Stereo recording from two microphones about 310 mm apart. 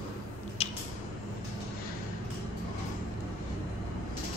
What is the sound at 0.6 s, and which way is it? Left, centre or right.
Squish, centre.